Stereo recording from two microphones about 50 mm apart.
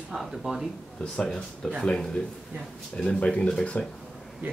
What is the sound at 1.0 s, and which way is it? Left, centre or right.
Speech, centre.